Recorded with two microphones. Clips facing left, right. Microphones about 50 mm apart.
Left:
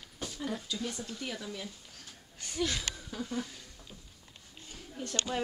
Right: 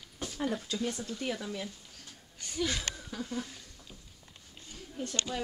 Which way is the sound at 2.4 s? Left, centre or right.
Centre.